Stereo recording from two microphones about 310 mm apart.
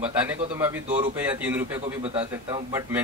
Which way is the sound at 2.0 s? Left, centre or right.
Centre.